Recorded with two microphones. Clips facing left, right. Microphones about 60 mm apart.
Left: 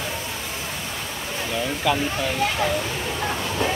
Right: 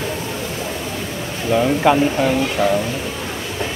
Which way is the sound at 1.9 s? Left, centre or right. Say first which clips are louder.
Right 7 dB; right.